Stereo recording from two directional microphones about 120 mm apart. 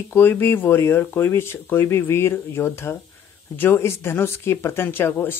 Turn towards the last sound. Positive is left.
turn(degrees=20)  # may be behind; listen again after turning